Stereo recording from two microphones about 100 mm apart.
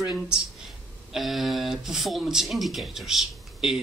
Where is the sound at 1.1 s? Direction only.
Centre (ahead or behind).